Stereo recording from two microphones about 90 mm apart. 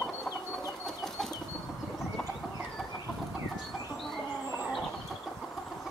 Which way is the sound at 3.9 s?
Centre (ahead or behind).